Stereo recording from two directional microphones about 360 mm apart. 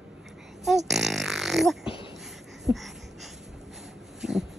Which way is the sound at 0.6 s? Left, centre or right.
Centre.